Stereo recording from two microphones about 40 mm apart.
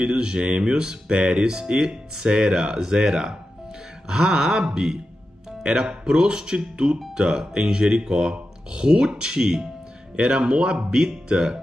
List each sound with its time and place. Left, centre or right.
0.0 s speech: centre